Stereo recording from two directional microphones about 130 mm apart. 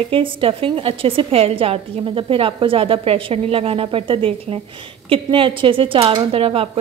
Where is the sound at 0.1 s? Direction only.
45° right (ahead or behind).